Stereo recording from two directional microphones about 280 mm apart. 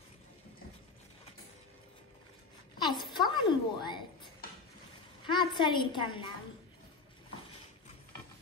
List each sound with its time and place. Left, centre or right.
3.2 s a woman's voice: centre